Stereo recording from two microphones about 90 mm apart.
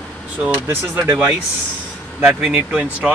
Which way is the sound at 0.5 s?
25° right (ahead or behind).